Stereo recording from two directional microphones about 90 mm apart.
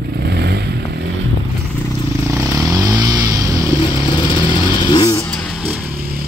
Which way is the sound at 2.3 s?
40° right (ahead or behind).